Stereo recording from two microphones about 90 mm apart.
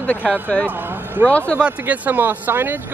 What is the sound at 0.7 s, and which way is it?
Speech, 20° right (ahead or behind).